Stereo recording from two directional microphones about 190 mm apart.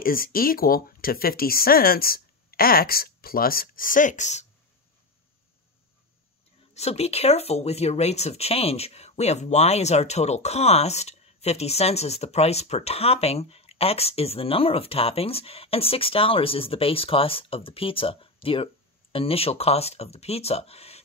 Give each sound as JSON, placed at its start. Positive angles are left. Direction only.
{"t": 0.0, "sound": "speech", "side_deg": 50}
{"t": 6.7, "sound": "speech", "side_deg": 35}